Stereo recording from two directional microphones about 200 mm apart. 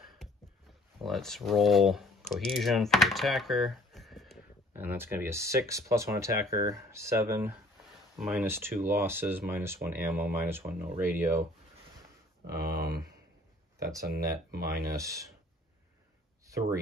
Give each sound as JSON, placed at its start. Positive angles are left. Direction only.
{"t": 1.0, "sound": "speech", "side_deg": 0}
{"t": 4.7, "sound": "speech", "side_deg": -10}
{"t": 12.4, "sound": "speech", "side_deg": -50}
{"t": 14.0, "sound": "speech", "side_deg": -50}
{"t": 14.9, "sound": "speech", "side_deg": -15}